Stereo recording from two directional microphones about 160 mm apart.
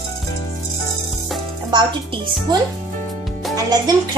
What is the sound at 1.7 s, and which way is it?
Speech, 30° right (ahead or behind).